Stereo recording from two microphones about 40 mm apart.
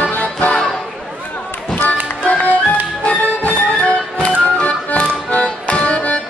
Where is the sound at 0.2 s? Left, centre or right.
Left.